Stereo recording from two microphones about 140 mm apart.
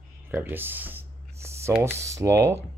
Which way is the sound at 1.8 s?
20° right (ahead or behind).